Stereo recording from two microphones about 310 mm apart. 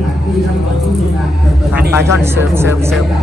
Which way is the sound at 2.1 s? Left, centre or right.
Centre.